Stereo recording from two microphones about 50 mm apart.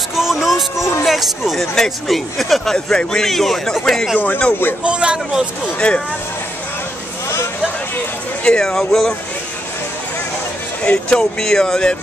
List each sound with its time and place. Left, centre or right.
0.1 s music: centre
1.0 s speech: centre
2.7 s a man's voice: centre
4.8 s speech: right
5.8 s speech: left
8.5 s a man's voice: centre
10.8 s a man's voice: left